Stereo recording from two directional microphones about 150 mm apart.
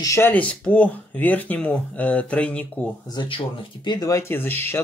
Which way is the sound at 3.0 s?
30° left (ahead or behind).